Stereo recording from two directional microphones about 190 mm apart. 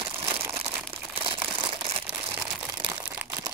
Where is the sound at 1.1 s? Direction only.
30° right (ahead or behind).